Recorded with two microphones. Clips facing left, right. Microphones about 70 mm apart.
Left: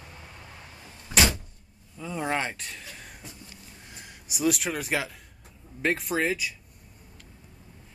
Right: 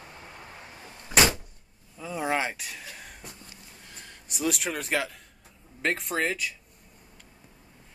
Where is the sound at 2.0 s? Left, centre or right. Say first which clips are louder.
Right 1 dB; centre.